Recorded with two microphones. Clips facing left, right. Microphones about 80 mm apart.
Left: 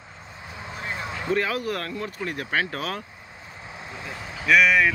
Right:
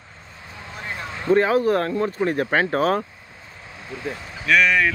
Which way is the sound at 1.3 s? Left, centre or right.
Right.